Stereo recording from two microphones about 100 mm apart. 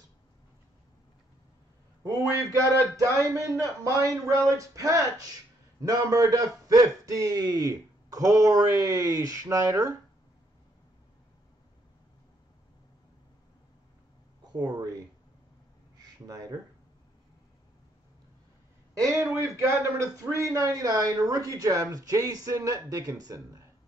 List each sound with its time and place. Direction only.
2.0 s a man's voice: 30° right (ahead or behind)
14.4 s a sound: 40° right (ahead or behind)
16.3 s a man's voice: 35° right (ahead or behind)
18.9 s a man's voice: 30° right (ahead or behind)